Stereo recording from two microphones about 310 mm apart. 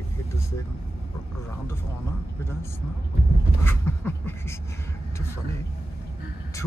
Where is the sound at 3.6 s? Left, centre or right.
Centre.